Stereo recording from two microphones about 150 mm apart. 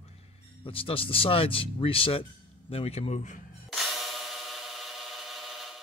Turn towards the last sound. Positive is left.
turn(degrees=0)  # may be behind; listen again after turning